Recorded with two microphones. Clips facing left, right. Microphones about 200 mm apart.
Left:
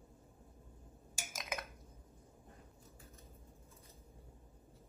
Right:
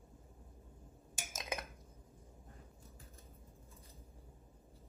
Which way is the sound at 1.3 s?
25° right (ahead or behind).